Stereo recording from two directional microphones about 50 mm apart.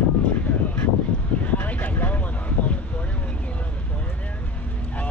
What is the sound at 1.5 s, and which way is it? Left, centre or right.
Vehicle, left.